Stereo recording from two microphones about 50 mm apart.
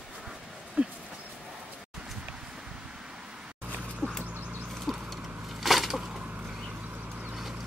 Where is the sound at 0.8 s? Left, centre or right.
Right.